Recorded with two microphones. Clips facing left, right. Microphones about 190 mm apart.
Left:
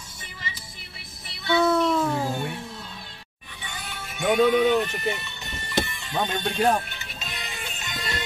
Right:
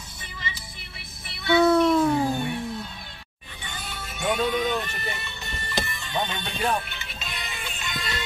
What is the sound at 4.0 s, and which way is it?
Music, 10° left (ahead or behind).